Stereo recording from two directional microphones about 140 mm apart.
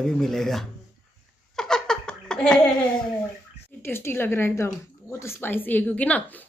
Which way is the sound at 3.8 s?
15° left (ahead or behind).